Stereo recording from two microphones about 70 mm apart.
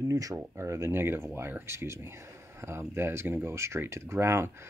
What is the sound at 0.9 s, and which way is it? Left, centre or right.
Speech, right.